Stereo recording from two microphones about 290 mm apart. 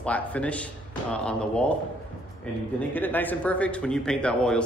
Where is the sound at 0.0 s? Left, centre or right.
Centre.